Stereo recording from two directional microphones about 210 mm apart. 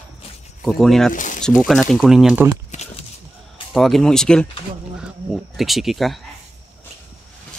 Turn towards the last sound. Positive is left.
turn(degrees=0)  # may be behind; listen again after turning